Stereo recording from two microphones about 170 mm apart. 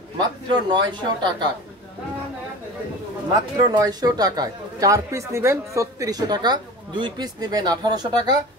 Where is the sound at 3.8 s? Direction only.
20° right (ahead or behind).